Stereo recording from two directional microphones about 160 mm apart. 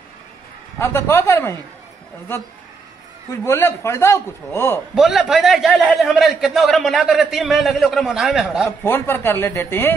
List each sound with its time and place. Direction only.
0.7 s a man's voice: 15° left (ahead or behind)
3.4 s a man's voice: 15° left (ahead or behind)
4.9 s a man's voice: centre (ahead or behind)
8.6 s a man's voice: 15° left (ahead or behind)